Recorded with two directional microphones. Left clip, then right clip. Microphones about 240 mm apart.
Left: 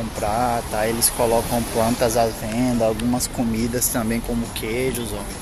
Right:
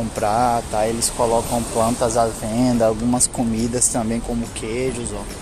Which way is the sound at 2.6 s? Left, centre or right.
Centre.